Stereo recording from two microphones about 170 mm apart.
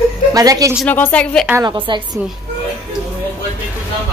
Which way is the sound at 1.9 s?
30° right (ahead or behind).